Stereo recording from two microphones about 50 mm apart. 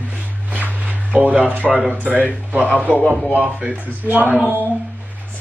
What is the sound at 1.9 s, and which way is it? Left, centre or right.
Speech, right.